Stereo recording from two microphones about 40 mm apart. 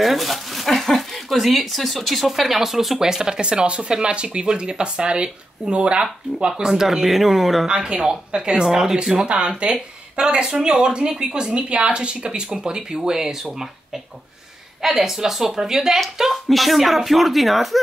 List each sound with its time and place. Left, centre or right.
0.0 s speech: centre
3.0 s speech: centre
6.4 s speech: centre
7.6 s speech: right
14.8 s speech: centre
16.4 s speech: centre